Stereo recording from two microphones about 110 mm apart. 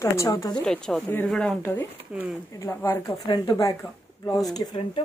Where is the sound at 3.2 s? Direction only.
40° left (ahead or behind).